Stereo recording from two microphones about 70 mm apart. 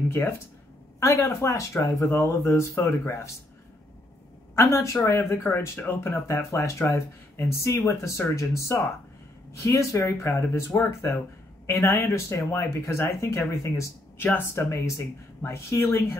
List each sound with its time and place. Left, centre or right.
0.9 s speech: left
4.6 s speech: left
14.1 s speech: left
14.4 s speech: left